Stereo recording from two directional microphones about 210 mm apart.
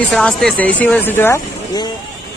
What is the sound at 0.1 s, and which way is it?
Speech, centre (ahead or behind).